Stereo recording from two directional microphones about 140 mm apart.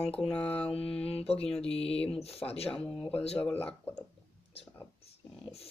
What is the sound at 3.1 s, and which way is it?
Speech, 45° left (ahead or behind).